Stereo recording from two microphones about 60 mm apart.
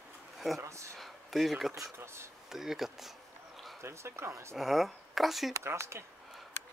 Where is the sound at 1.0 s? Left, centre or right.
Centre.